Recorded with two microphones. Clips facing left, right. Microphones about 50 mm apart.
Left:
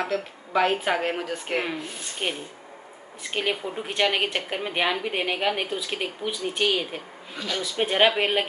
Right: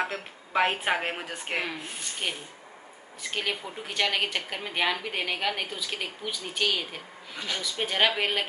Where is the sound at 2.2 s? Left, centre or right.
Centre.